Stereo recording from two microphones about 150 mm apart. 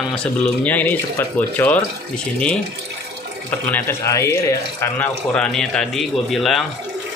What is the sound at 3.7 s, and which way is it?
Speech, 20° left (ahead or behind).